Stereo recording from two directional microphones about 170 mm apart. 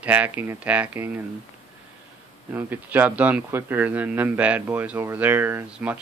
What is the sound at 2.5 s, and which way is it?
Speech, 10° right (ahead or behind).